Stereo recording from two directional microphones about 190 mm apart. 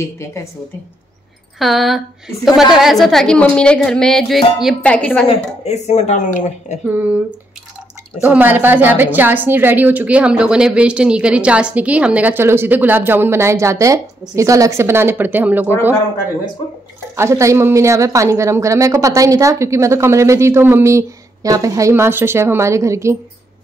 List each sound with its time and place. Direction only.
0.0 s a woman's voice: 15° left (ahead or behind)
1.6 s a woman's voice: centre (ahead or behind)
5.3 s speech: 35° left (ahead or behind)
6.9 s speech: 10° right (ahead or behind)
8.2 s speech: 10° right (ahead or behind)
17.1 s speech: 15° right (ahead or behind)